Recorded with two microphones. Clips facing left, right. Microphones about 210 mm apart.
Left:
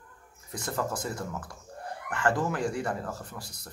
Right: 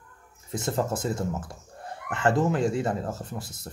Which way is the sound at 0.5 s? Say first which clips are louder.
Right 5 dB; 25° right (ahead or behind).